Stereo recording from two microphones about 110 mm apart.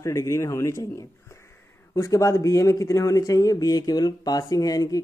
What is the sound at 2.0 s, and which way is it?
Speech, 30° left (ahead or behind).